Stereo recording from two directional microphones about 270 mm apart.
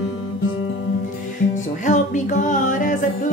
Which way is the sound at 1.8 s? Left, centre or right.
Left.